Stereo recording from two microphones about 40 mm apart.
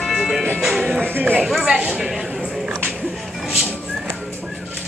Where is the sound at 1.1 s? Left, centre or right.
Right.